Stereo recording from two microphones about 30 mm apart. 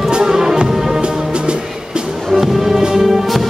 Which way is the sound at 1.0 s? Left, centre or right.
Right.